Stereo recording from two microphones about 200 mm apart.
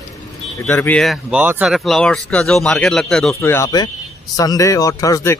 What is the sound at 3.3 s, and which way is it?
Speech, 15° left (ahead or behind).